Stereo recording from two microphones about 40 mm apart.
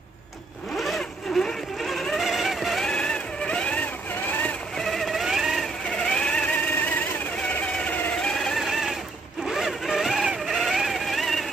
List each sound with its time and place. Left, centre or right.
0.7 s vehicle: centre
1.8 s a sound: centre
2.1 s vehicle: centre
2.9 s vehicle: left
4.1 s vehicle: left
4.7 s a sound: centre
5.2 s vehicle: centre
5.9 s vehicle: left
8.2 s vehicle: centre
8.5 s sewing machine: centre
9.5 s zipper: centre
10.4 s vehicle: centre